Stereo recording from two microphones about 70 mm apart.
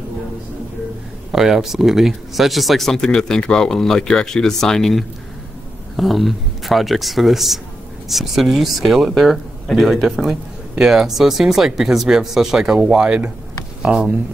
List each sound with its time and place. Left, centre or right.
1.3 s speech: centre